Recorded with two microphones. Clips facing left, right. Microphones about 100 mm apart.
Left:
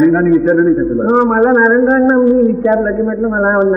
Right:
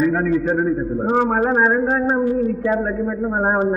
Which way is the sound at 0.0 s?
30° left (ahead or behind).